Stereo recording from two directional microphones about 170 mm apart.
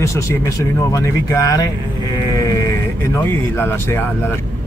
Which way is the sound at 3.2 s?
15° left (ahead or behind).